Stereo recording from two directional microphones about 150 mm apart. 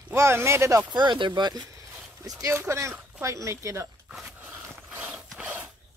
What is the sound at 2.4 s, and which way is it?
Speech, 15° right (ahead or behind).